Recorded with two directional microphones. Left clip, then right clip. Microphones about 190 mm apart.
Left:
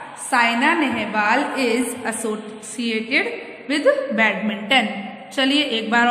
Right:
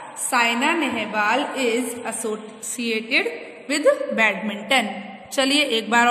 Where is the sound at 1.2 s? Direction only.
10° right (ahead or behind).